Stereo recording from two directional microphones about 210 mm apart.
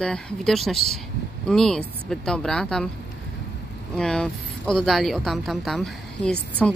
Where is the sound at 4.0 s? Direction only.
5° left (ahead or behind).